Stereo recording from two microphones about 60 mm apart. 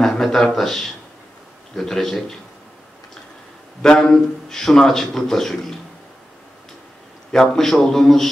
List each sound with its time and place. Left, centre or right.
0.0 s a man's voice: centre
3.8 s a man's voice: centre
7.3 s a man's voice: centre